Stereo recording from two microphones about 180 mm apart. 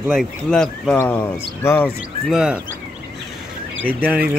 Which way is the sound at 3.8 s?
10° right (ahead or behind).